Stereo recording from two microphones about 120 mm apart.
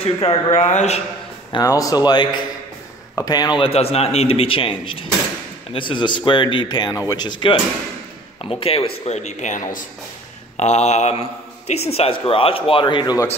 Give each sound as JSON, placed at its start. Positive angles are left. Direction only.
{"t": 0.0, "sound": "a man's voice", "side_deg": 55}
{"t": 1.6, "sound": "a man's voice", "side_deg": 30}
{"t": 8.5, "sound": "speech", "side_deg": 50}
{"t": 10.6, "sound": "a man's voice", "side_deg": 65}